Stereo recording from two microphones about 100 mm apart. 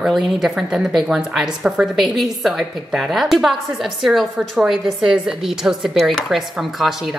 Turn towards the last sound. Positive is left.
turn(degrees=0)  # may be behind; listen again after turning